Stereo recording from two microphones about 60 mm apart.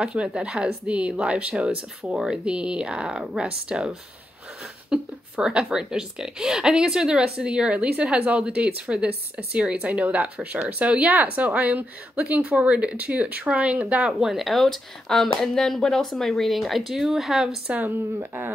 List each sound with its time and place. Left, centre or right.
0.0 s speech: centre
4.9 s speech: centre
14.2 s speech: centre
17.8 s speech: right